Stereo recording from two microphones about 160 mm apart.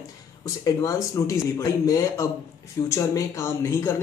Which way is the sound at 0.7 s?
20° left (ahead or behind).